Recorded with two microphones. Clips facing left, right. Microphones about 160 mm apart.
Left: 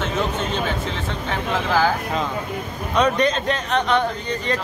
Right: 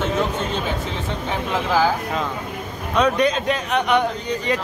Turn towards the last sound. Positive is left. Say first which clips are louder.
# right 1 dB
turn(degrees=-10)  # may be behind; listen again after turning